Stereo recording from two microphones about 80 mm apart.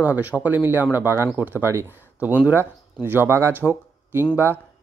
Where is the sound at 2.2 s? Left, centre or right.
Right.